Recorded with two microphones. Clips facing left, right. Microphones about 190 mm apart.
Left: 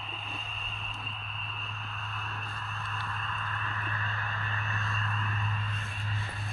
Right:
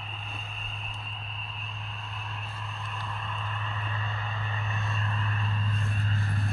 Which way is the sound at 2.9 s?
15° right (ahead or behind).